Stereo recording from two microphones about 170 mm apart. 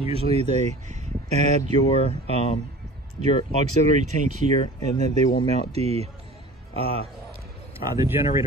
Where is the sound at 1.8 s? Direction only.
35° left (ahead or behind).